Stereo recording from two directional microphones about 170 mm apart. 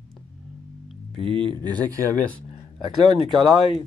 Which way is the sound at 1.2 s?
30° right (ahead or behind).